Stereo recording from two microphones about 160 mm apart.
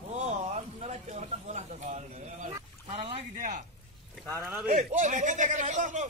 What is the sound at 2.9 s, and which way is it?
Boat, 35° right (ahead or behind).